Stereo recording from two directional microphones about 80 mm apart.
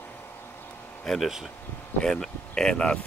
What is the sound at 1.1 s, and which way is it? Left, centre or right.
Speech, centre.